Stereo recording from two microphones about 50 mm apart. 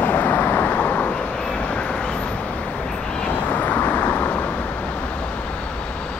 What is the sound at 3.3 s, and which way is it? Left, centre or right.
Vehicle, left.